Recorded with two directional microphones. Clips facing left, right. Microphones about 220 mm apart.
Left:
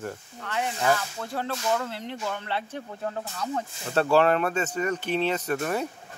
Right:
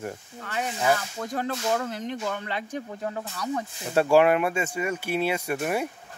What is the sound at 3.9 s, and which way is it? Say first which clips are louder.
Speech: right 2 dB; 10° right (ahead or behind).